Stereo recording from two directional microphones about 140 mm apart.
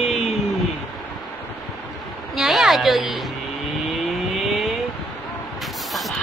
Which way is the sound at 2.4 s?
Centre (ahead or behind).